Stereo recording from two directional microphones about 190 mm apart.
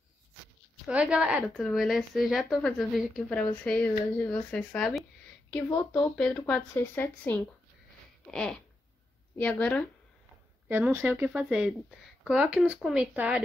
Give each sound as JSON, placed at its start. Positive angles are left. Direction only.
{"t": 0.8, "sound": "a woman's voice", "side_deg": -5}
{"t": 10.7, "sound": "a woman's voice", "side_deg": -10}